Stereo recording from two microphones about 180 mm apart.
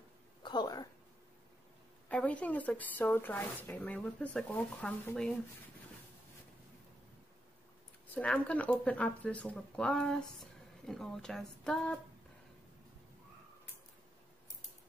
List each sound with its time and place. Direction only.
0.4 s a sound: 25° left (ahead or behind)
2.0 s speech: 5° left (ahead or behind)
8.1 s speech: 5° left (ahead or behind)